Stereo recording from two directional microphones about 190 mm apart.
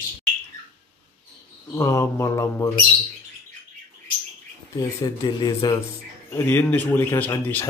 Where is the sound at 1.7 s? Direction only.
15° left (ahead or behind).